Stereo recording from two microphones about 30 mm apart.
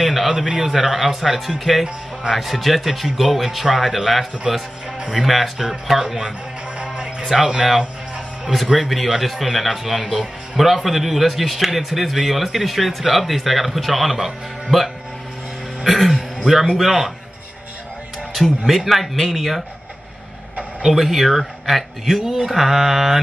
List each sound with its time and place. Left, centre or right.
0.0 s a sound: centre
0.6 s speech: centre
6.8 s music: right
8.7 s speech: centre
16.2 s music: centre
16.7 s speech: centre
18.7 s speech: centre
20.8 s speech: centre